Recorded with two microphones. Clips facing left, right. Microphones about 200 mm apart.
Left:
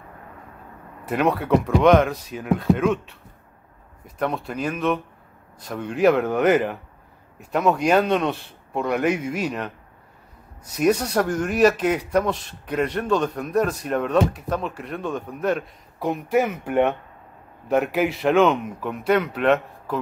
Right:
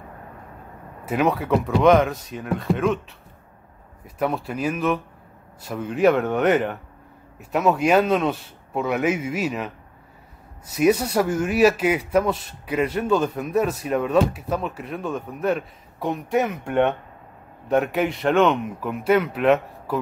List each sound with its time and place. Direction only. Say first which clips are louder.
1.0 s speech: even; centre (ahead or behind)
4.2 s speech: right 1 dB; 5° right (ahead or behind)
10.8 s speech: right 1 dB; 5° right (ahead or behind)